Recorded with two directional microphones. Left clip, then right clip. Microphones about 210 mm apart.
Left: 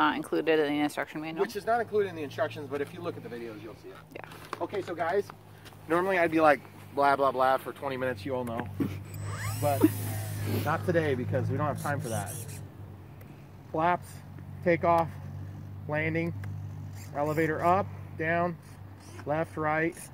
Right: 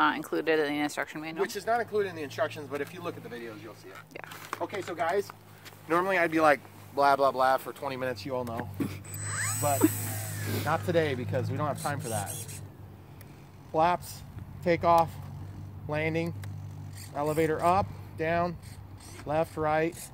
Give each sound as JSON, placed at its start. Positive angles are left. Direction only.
{"t": 0.0, "sound": "speech", "side_deg": 5}
{"t": 1.4, "sound": "speech", "side_deg": -10}
{"t": 7.0, "sound": "speech", "side_deg": -30}
{"t": 8.7, "sound": "a sound", "side_deg": 0}
{"t": 9.8, "sound": "vehicle", "side_deg": -10}
{"t": 10.6, "sound": "speech", "side_deg": -30}
{"t": 13.7, "sound": "speech", "side_deg": -40}
{"t": 16.0, "sound": "speech", "side_deg": -65}
{"t": 17.1, "sound": "speech", "side_deg": -50}